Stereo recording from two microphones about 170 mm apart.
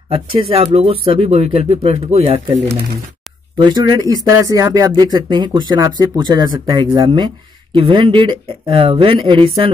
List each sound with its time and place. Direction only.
0.1 s speech: 35° right (ahead or behind)
3.5 s speech: 25° right (ahead or behind)